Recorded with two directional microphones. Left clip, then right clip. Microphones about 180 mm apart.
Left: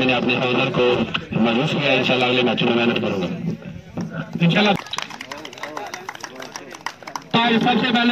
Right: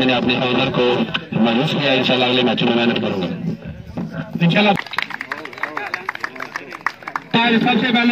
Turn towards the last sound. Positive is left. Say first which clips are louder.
# right 2 dB
turn(degrees=-35)  # may be behind; listen again after turning